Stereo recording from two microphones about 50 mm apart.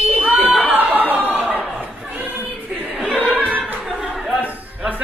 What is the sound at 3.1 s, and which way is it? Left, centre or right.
Singing, right.